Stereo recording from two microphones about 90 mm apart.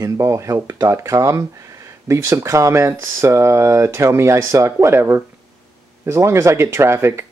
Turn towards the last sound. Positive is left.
turn(degrees=-30)  # may be behind; listen again after turning